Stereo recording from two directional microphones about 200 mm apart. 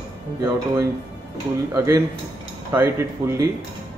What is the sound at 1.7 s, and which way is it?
Speech, 15° right (ahead or behind).